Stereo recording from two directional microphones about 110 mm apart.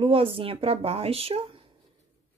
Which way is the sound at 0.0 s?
60° right (ahead or behind).